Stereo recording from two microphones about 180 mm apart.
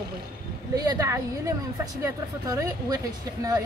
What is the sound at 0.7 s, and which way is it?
Speech, 20° right (ahead or behind).